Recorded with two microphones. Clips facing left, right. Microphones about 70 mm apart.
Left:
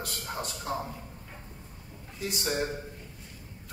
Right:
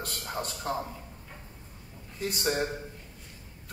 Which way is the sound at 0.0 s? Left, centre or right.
Right.